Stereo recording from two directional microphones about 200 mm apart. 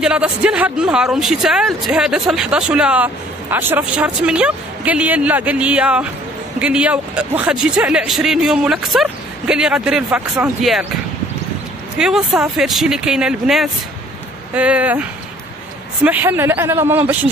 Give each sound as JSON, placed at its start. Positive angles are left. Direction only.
{"t": 0.0, "sound": "speech", "side_deg": -5}
{"t": 12.0, "sound": "speech", "side_deg": 0}